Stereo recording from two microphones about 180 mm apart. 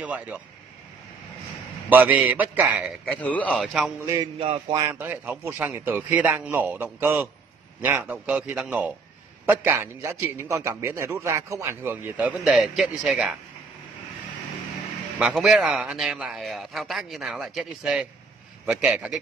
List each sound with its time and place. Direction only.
0.0 s a man's voice: 10° right (ahead or behind)
1.9 s a man's voice: 10° right (ahead or behind)
3.1 s a man's voice: 10° left (ahead or behind)
4.0 s mantra: 20° right (ahead or behind)
4.4 s a sound: 30° right (ahead or behind)
4.7 s a man's voice: 15° right (ahead or behind)
15.1 s a man's voice: centre (ahead or behind)